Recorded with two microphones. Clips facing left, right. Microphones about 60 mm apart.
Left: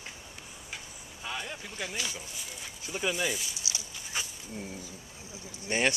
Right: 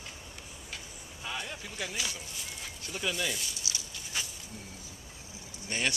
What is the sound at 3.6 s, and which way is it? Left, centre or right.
Dog, centre.